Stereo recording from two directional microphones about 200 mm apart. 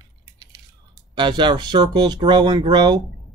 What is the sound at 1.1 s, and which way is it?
Speech, 25° right (ahead or behind).